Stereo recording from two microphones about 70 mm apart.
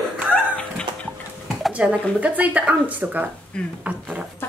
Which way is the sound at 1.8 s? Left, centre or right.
Centre.